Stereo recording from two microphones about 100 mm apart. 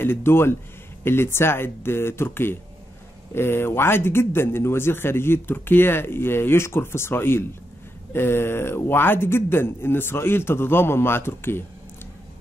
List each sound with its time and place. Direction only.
0.0 s speech: 25° left (ahead or behind)